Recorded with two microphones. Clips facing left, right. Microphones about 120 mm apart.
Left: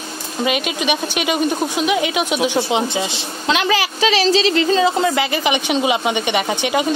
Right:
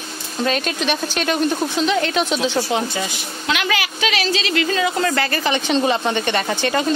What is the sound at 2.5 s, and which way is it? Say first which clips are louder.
A woman's voice: left 2 dB; 20° left (ahead or behind).